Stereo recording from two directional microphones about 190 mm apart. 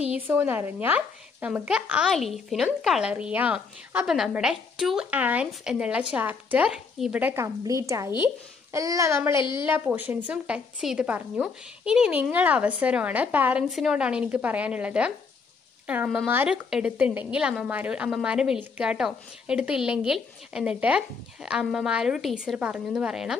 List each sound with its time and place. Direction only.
0.3 s speech: 10° right (ahead or behind)
9.3 s a woman's voice: 25° left (ahead or behind)
9.7 s a woman's voice: 10° right (ahead or behind)